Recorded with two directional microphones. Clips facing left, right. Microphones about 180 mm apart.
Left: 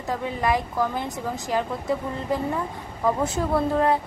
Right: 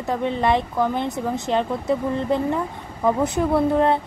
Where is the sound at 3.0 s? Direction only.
20° right (ahead or behind).